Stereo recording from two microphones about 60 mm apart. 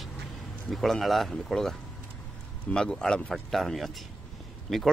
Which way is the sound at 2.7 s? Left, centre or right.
Centre.